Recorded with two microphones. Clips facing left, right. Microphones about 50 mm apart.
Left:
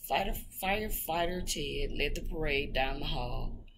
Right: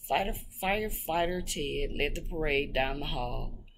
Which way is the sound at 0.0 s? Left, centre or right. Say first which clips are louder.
Right 2 dB; centre.